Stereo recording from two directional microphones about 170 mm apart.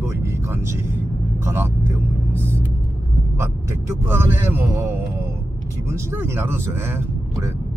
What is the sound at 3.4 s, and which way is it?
Speech, 15° right (ahead or behind).